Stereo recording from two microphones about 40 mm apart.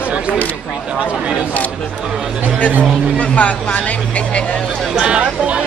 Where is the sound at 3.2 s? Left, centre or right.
Left.